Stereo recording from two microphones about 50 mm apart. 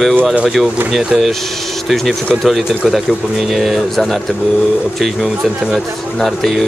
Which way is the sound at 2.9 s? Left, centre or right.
Centre.